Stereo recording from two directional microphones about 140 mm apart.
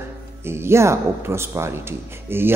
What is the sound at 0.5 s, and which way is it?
Speech, 20° right (ahead or behind).